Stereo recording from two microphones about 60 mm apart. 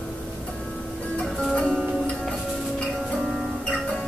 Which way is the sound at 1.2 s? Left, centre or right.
Centre.